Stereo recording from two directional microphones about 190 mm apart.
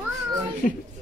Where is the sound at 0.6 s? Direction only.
45° left (ahead or behind).